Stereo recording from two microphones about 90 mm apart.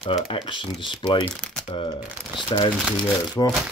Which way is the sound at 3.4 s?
40° left (ahead or behind).